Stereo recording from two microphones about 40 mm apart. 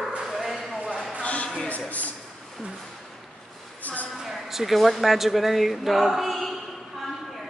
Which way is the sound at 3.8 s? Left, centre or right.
Left.